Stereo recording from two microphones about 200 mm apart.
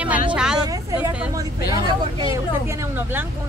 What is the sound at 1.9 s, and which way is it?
Speech, 20° right (ahead or behind).